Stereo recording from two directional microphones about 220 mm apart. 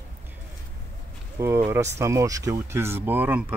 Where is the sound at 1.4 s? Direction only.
10° right (ahead or behind).